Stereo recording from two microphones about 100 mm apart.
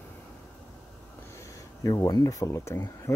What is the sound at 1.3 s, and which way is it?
Speech, 35° left (ahead or behind).